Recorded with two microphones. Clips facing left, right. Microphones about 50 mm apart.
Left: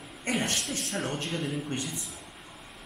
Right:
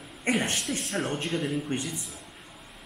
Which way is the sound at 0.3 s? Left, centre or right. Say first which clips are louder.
Right 4 dB; right.